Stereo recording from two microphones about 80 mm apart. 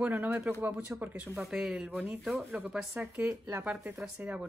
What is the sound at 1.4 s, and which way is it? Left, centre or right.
Speech, centre.